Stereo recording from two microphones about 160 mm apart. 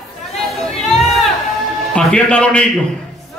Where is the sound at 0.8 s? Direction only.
Centre (ahead or behind).